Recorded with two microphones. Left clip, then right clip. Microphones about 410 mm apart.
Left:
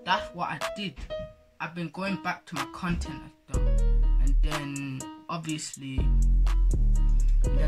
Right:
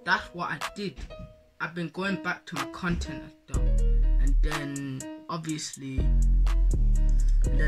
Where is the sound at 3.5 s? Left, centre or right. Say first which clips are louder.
Left 2 dB; centre.